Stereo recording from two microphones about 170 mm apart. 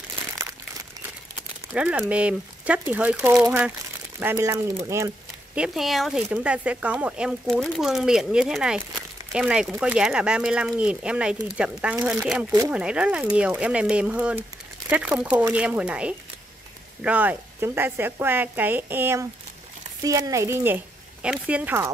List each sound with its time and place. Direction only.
1.8 s a woman's voice: 5° right (ahead or behind)
5.5 s a woman's voice: 5° right (ahead or behind)